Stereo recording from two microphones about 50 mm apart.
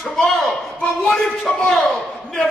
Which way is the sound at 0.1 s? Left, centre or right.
Centre.